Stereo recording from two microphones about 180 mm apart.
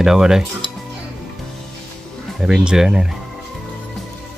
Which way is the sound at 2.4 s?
5° right (ahead or behind).